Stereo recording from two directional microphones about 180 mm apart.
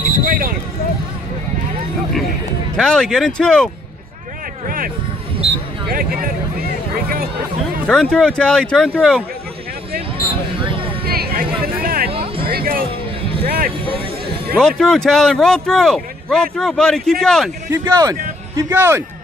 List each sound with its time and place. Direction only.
0.1 s basketball bounce: 55° right (ahead or behind)
2.7 s speech: 5° left (ahead or behind)
4.6 s speech: 50° right (ahead or behind)
7.8 s speech: 5° left (ahead or behind)
10.6 s a sound: 30° right (ahead or behind)
11.1 s a sound: 55° right (ahead or behind)
12.1 s music: 30° right (ahead or behind)
12.4 s music: 55° right (ahead or behind)
14.6 s speech: 5° left (ahead or behind)
17.6 s speech: 20° right (ahead or behind)